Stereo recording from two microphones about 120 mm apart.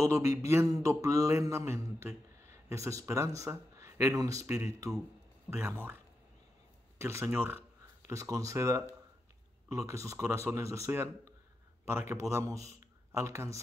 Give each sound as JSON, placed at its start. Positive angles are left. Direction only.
{"t": 0.0, "sound": "speech", "side_deg": -25}
{"t": 7.0, "sound": "speech", "side_deg": -20}
{"t": 8.1, "sound": "speech", "side_deg": -25}